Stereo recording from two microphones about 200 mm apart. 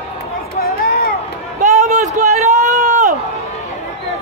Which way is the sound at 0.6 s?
50° left (ahead or behind).